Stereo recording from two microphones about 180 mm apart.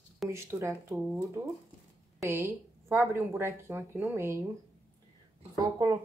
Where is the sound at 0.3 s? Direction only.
15° right (ahead or behind).